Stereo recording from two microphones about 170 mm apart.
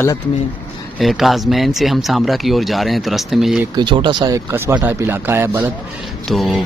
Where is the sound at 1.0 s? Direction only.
Centre (ahead or behind).